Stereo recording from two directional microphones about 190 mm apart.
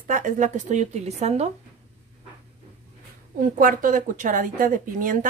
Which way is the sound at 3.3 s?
45° right (ahead or behind).